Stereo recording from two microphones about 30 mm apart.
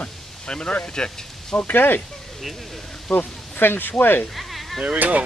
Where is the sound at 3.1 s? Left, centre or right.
Left.